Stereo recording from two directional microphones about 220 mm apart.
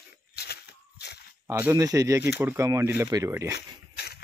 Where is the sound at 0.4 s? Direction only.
45° left (ahead or behind).